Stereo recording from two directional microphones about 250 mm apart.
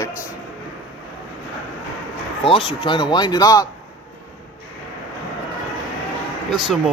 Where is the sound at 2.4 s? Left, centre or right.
Left.